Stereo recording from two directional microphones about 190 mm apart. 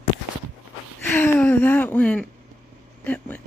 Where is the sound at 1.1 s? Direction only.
10° left (ahead or behind).